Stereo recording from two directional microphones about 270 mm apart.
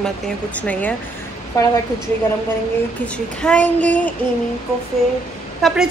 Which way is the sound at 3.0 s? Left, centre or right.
Centre.